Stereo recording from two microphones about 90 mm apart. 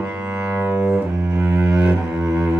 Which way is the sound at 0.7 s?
10° right (ahead or behind).